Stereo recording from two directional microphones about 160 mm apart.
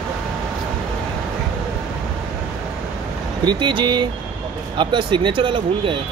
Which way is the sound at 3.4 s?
30° right (ahead or behind).